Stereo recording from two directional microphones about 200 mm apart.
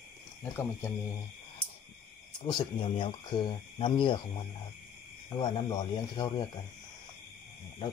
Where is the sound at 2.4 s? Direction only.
25° left (ahead or behind).